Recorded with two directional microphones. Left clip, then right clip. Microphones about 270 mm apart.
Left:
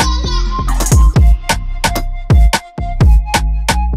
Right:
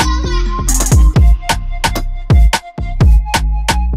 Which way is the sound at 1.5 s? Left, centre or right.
Right.